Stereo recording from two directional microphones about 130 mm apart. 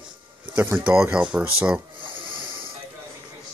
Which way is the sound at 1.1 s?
10° right (ahead or behind).